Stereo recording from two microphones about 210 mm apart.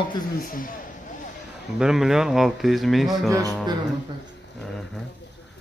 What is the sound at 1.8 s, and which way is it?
Speech, centre (ahead or behind).